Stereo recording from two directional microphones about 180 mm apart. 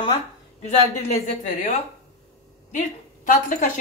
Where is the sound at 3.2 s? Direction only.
45° left (ahead or behind).